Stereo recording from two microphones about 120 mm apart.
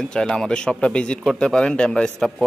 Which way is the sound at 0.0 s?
5° left (ahead or behind).